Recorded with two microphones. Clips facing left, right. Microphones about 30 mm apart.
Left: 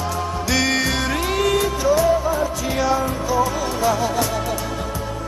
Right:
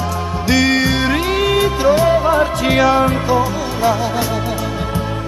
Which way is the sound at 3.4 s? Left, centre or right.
Right.